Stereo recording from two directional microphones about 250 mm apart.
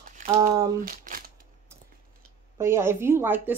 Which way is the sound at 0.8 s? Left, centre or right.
Right.